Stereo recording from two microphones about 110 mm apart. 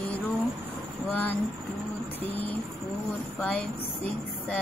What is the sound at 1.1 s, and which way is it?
Speech, 15° left (ahead or behind).